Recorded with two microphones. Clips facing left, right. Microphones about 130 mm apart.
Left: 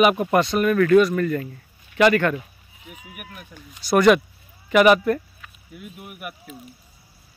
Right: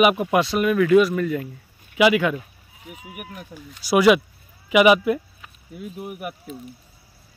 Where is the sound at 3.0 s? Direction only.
25° right (ahead or behind).